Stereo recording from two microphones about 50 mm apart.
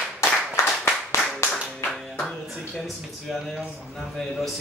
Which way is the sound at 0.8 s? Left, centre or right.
Left.